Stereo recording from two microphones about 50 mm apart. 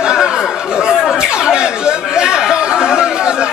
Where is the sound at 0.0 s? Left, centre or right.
Centre.